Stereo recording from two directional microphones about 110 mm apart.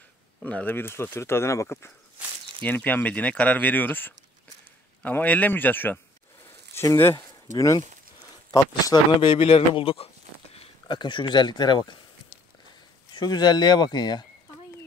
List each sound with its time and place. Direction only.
0.5 s speech: 15° left (ahead or behind)
7.5 s speech: 30° left (ahead or behind)
8.9 s speech: 45° left (ahead or behind)
13.1 s speech: 40° left (ahead or behind)